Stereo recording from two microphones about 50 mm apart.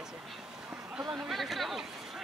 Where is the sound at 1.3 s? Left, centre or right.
Centre.